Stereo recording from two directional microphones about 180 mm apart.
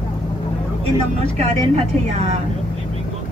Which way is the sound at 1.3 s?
35° right (ahead or behind).